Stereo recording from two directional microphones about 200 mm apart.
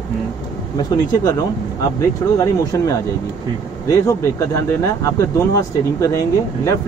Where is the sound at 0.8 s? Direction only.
20° left (ahead or behind).